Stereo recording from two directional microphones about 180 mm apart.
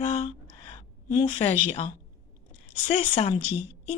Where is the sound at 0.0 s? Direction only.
35° left (ahead or behind).